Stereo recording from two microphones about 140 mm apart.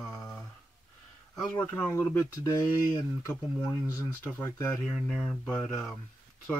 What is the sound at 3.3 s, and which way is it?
Speech, 15° left (ahead or behind).